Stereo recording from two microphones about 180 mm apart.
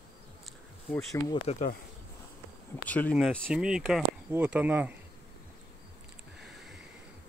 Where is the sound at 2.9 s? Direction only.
10° left (ahead or behind); by 4.9 s 10° right (ahead or behind).